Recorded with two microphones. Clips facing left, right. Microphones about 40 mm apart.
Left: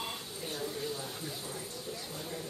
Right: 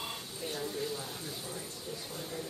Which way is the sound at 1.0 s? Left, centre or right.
Left.